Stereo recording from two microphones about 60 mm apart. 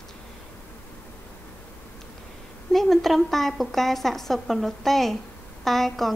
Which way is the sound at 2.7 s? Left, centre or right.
Centre.